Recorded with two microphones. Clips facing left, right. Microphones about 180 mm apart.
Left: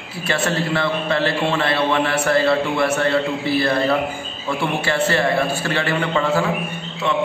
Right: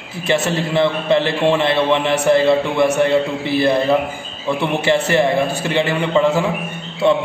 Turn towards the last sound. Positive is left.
turn(degrees=-30)  # may be behind; listen again after turning